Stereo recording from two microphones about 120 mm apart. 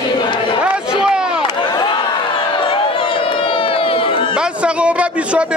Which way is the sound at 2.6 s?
50° left (ahead or behind).